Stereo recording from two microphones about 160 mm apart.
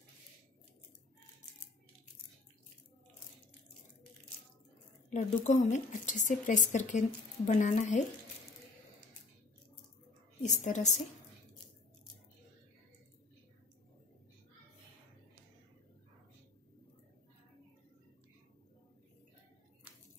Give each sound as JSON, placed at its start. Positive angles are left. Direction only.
{"t": 5.1, "sound": "speech", "side_deg": 50}
{"t": 10.4, "sound": "speech", "side_deg": 50}